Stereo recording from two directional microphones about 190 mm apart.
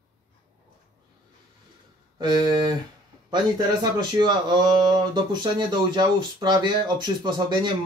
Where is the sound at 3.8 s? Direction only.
25° right (ahead or behind).